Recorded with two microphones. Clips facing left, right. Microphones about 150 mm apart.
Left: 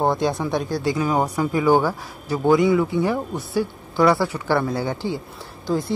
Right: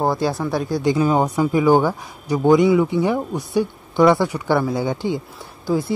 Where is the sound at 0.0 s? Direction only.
Centre (ahead or behind).